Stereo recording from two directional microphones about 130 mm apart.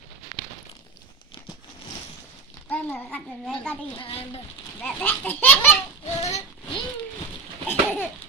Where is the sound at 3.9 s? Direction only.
45° left (ahead or behind).